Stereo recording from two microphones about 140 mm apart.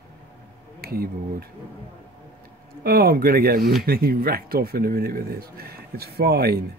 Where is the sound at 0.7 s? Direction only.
90° right.